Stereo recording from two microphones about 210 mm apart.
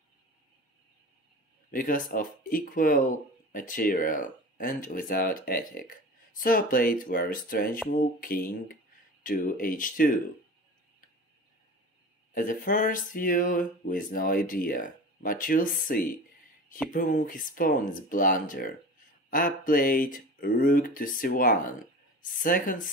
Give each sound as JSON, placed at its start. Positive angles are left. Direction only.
{"t": 1.7, "sound": "speech", "side_deg": 40}
{"t": 12.4, "sound": "speech", "side_deg": 40}